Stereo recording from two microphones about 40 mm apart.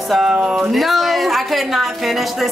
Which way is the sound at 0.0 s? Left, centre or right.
Centre.